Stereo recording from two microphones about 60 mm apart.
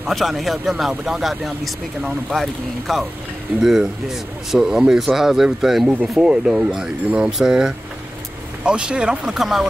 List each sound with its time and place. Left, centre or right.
0.0 s speech: centre
9.3 s speech: centre